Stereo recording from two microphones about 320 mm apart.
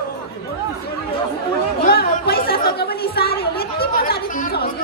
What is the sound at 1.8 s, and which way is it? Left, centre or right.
Chatter, left.